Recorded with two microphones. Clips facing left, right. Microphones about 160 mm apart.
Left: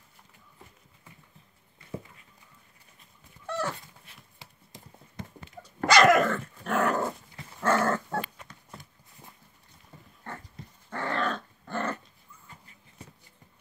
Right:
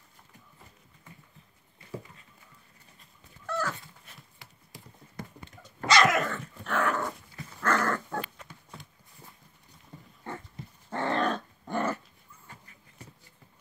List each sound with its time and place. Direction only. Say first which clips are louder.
3.4 s dog: left 1 dB; 25° left (ahead or behind)
4.4 s clip-clop: left 3 dB; 25° left (ahead or behind)
5.8 s dog: left 4 dB; 55° left (ahead or behind)
7.6 s dog: left 3 dB; 25° left (ahead or behind)
10.9 s dog: right 2 dB; 25° right (ahead or behind)